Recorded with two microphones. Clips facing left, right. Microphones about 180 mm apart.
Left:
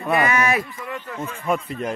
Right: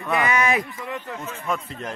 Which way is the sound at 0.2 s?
15° right (ahead or behind).